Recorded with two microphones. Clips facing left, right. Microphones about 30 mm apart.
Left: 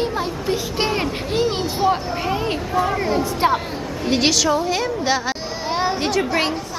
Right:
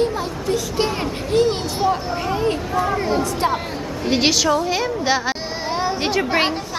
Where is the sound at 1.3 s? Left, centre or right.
Centre.